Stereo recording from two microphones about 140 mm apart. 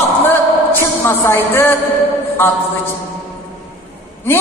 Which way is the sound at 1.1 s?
15° left (ahead or behind).